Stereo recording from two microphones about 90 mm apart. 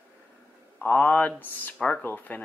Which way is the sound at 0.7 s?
20° left (ahead or behind).